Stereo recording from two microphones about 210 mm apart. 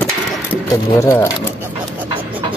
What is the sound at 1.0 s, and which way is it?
Speech, 15° left (ahead or behind).